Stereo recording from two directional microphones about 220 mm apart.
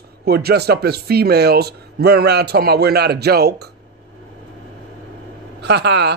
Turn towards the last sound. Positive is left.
turn(degrees=-50)  # may be behind; listen again after turning